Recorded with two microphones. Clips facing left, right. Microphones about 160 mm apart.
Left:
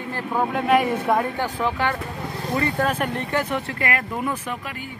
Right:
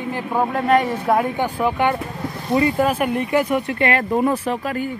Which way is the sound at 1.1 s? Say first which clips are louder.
Right 3 dB; 15° right (ahead or behind).